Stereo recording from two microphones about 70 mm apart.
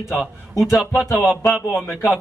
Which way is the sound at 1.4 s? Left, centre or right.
Centre.